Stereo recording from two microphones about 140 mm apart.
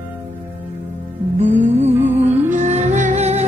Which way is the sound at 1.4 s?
55° right (ahead or behind).